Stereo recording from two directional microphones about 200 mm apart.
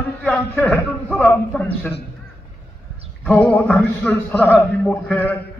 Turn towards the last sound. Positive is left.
turn(degrees=10)  # may be behind; listen again after turning